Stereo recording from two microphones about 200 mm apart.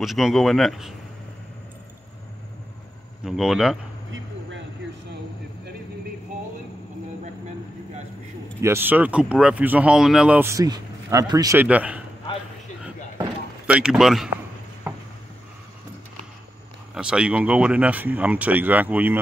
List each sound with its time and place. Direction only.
0.0 s speech: centre (ahead or behind)
3.3 s speech: centre (ahead or behind)
4.1 s a sound: 70° right (ahead or behind)
8.5 s speech: 10° right (ahead or behind)
11.6 s speech: 5° right (ahead or behind)
13.7 s speech: 5° right (ahead or behind)
16.9 s speech: 5° right (ahead or behind)